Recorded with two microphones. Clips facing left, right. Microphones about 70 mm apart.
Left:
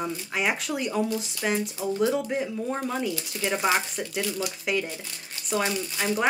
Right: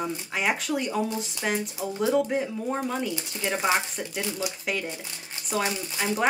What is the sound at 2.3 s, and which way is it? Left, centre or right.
Speech, centre.